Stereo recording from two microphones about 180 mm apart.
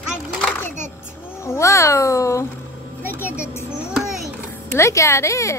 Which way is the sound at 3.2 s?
15° left (ahead or behind).